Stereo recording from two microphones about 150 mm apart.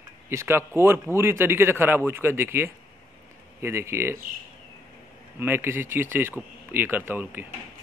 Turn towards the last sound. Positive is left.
turn(degrees=-15)  # may be behind; listen again after turning